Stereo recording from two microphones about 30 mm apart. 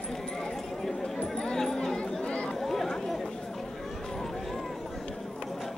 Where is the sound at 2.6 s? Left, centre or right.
Centre.